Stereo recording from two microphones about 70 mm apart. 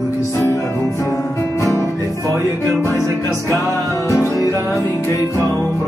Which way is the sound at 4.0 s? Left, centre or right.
Left.